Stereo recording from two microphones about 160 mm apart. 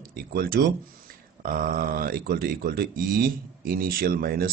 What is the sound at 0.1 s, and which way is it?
Speech, 75° right (ahead or behind).